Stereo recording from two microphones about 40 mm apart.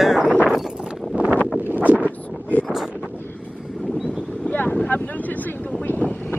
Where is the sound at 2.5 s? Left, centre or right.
Left.